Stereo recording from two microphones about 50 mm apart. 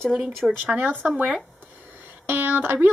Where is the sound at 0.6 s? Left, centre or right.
Right.